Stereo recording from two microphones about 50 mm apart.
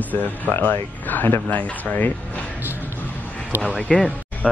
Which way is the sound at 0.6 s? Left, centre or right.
Left.